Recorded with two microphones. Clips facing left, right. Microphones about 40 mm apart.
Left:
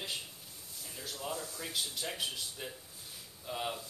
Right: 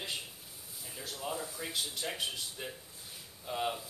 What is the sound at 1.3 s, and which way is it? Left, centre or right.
Speech, centre.